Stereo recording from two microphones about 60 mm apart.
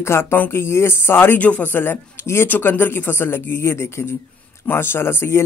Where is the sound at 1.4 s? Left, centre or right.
Left.